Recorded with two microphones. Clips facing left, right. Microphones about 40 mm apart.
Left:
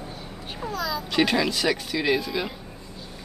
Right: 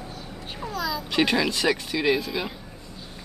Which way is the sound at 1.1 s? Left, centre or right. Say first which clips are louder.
Even; centre.